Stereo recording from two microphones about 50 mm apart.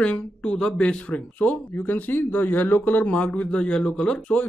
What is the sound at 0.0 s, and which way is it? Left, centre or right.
Speech, left.